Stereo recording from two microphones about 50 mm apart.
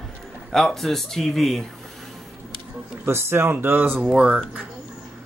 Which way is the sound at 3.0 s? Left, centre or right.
Right.